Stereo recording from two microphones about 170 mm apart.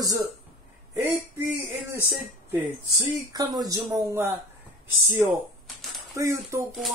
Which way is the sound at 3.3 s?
20° right (ahead or behind).